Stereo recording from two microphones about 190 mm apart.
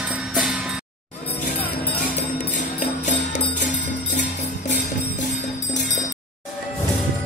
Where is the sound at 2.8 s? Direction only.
40° left (ahead or behind).